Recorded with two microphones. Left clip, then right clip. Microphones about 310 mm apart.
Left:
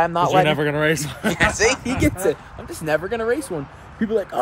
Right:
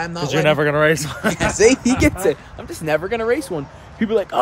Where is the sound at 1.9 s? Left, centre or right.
Centre.